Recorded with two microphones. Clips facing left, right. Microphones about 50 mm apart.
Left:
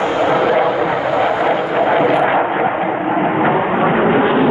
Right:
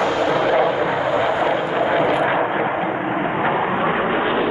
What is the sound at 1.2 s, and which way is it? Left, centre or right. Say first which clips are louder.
Vehicle: left 4 dB; left.